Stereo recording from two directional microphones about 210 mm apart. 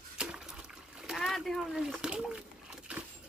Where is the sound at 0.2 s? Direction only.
5° right (ahead or behind).